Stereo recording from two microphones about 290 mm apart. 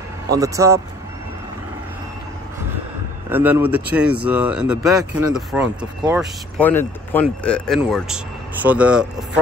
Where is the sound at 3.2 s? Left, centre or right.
Centre.